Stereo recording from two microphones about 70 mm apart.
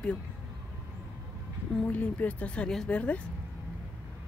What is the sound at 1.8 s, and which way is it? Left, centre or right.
Speech, left.